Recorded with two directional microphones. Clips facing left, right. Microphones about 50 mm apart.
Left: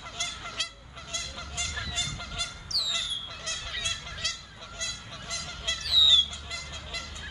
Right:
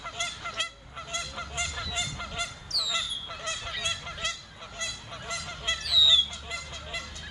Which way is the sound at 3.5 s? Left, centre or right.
Centre.